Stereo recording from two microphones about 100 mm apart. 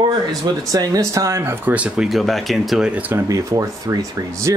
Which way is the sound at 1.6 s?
10° right (ahead or behind).